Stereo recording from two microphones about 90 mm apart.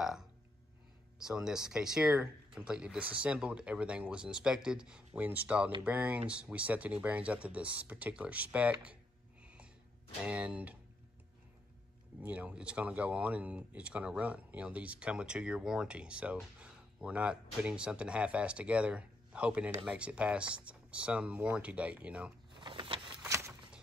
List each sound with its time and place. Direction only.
0.0 s a sound: 5° right (ahead or behind)
1.2 s speech: 5° right (ahead or behind)
9.4 s snort: 10° right (ahead or behind)
10.2 s speech: 15° right (ahead or behind)
12.2 s speech: 15° right (ahead or behind)
22.6 s vehicle: 65° right (ahead or behind)
23.2 s a sound: 35° right (ahead or behind)